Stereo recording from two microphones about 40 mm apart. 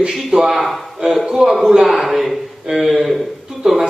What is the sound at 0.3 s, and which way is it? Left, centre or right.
Speech, centre.